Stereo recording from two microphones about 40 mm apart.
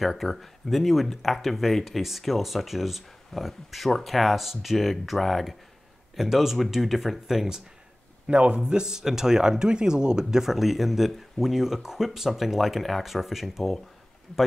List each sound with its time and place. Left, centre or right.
0.0 s speech: centre
8.3 s speech: right
10.4 s speech: centre